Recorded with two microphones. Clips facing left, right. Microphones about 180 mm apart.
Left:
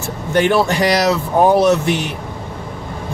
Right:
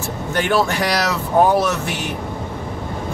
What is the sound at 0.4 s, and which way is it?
Speech, 20° left (ahead or behind).